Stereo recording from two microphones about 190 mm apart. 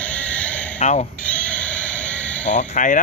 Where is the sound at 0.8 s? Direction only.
40° left (ahead or behind).